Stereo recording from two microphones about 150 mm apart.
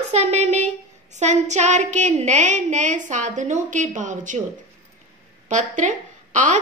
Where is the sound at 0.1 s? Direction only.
50° right (ahead or behind).